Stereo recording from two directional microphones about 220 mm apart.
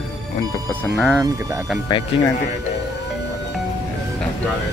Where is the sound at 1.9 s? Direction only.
20° left (ahead or behind).